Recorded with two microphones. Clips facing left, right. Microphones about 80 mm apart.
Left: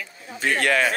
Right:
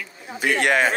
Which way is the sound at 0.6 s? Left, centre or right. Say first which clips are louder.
Right 2 dB; right.